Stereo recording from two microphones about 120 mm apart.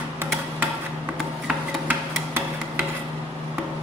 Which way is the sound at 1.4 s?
15° right (ahead or behind).